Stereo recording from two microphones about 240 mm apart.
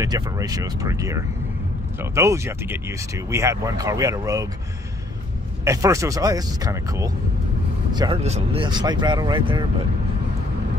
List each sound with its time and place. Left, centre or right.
0.0 s speech: centre
5.7 s speech: centre